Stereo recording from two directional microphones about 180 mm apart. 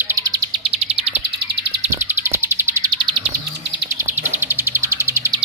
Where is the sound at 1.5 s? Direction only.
65° right (ahead or behind).